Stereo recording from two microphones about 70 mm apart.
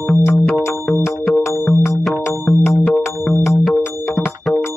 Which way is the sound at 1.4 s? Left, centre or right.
Left.